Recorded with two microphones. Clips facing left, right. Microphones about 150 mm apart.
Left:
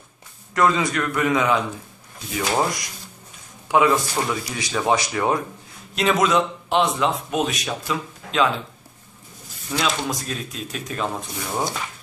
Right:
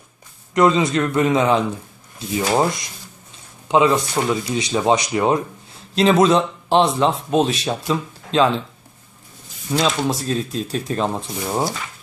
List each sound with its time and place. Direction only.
0.6 s speech: 20° right (ahead or behind)
9.8 s speech: 30° right (ahead or behind)